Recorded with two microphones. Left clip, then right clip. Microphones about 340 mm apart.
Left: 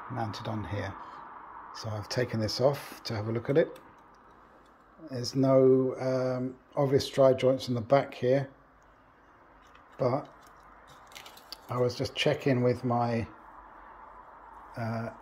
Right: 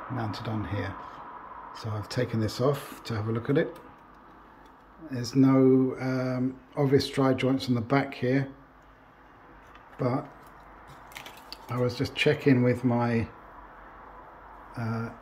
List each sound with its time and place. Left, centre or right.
0.1 s speech: centre
1.7 s speech: centre
2.0 s speech: centre
5.0 s speech: centre
9.9 s speech: centre
11.5 s speech: centre
14.7 s speech: centre